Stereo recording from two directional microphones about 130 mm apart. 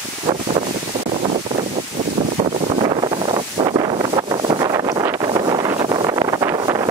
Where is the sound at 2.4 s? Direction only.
45° right (ahead or behind).